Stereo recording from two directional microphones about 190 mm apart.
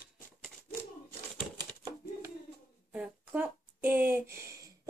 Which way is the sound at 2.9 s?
10° right (ahead or behind).